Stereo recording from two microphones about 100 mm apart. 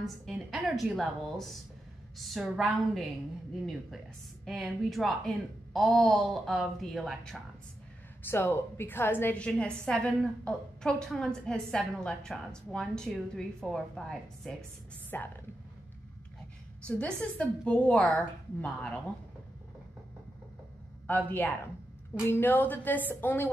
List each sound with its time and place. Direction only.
0.0 s a woman's voice: centre (ahead or behind)
4.5 s a woman's voice: centre (ahead or behind)
8.3 s a woman's voice: 25° left (ahead or behind); by 14.6 s 5° left (ahead or behind)
15.1 s a woman's voice: 20° left (ahead or behind)
16.8 s a woman's voice: 10° left (ahead or behind)
21.1 s a woman's voice: 15° left (ahead or behind)